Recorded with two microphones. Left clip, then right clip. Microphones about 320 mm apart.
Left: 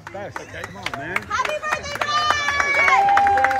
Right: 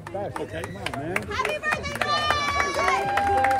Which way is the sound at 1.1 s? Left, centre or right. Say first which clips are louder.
Left 4 dB; left.